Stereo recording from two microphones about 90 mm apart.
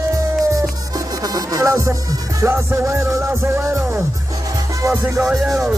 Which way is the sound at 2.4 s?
25° right (ahead or behind).